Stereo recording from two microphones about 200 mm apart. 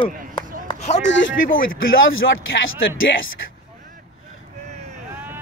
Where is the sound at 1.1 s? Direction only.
65° left (ahead or behind).